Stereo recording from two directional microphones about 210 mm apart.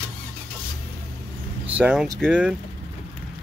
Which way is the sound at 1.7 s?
5° right (ahead or behind).